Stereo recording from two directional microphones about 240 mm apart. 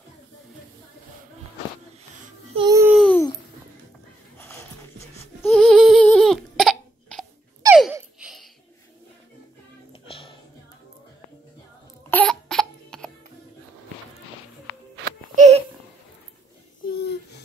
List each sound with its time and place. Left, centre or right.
2.5 s babbling: centre
3.0 s babbling: centre
4.4 s music: centre
5.4 s hiccup: centre
7.6 s a sound: centre
10.0 s music: left
12.1 s laughter: centre
15.3 s a sound: right
16.9 s a sound: left